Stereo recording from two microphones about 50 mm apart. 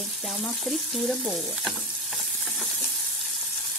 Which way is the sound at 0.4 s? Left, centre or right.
Centre.